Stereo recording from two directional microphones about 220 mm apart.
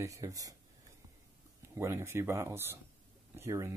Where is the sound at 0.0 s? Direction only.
15° right (ahead or behind).